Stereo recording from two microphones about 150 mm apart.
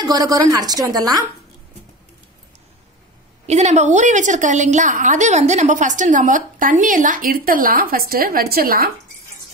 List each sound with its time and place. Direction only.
0.0 s a woman's voice: 25° right (ahead or behind)
3.4 s a woman's voice: 50° right (ahead or behind); by 8.9 s 85° right